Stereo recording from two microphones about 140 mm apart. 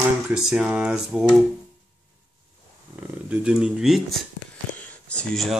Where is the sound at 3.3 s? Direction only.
5° right (ahead or behind).